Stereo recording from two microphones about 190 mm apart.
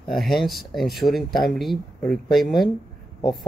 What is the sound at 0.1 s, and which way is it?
Speech, centre (ahead or behind).